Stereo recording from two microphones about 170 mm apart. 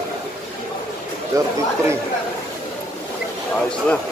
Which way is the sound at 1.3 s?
20° right (ahead or behind).